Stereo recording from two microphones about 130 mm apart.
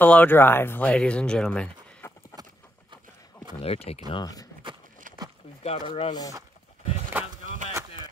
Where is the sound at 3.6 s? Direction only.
50° left (ahead or behind).